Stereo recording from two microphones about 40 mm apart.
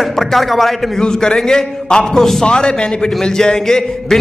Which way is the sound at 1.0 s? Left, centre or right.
Centre.